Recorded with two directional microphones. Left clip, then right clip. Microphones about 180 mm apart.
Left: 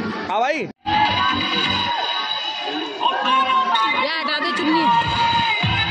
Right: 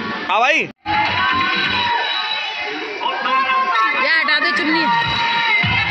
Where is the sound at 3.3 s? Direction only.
70° left (ahead or behind).